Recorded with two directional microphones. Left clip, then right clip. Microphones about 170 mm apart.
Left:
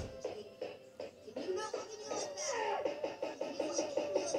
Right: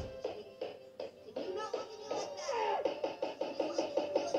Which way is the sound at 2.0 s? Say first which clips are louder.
Right 1 dB; 30° right (ahead or behind).